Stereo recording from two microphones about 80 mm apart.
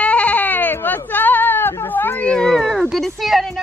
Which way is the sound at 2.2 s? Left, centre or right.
Centre.